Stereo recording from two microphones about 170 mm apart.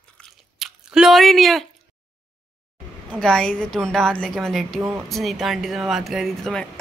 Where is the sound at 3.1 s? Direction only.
5° left (ahead or behind).